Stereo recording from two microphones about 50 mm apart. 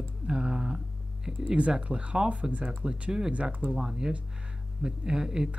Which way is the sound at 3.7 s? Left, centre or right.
Centre.